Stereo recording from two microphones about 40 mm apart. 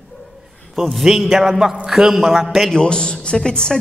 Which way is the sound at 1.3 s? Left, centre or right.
Centre.